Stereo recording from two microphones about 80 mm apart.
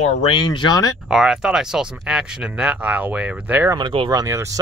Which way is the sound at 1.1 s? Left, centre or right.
Centre.